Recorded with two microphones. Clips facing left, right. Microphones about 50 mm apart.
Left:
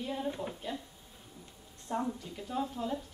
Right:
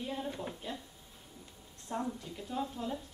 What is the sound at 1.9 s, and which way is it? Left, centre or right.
A woman's voice, centre.